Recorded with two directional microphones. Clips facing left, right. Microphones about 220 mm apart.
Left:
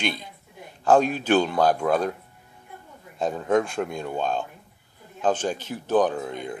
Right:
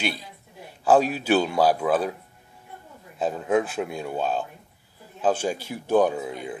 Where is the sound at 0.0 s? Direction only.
5° right (ahead or behind).